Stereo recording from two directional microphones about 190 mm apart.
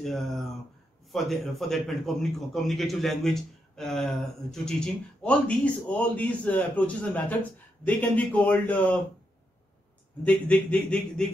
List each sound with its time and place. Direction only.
0.0 s a man's voice: centre (ahead or behind)
10.2 s a man's voice: 5° left (ahead or behind)